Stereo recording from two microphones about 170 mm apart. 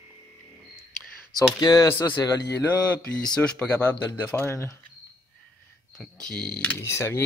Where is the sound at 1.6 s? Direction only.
20° left (ahead or behind).